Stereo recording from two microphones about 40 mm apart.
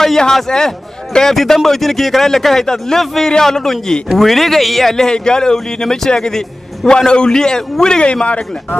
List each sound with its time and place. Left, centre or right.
0.0 s a man's voice: centre
8.1 s speech: left